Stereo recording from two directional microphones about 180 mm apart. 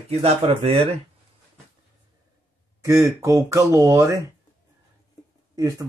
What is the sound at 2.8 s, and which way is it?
Speech, 15° right (ahead or behind).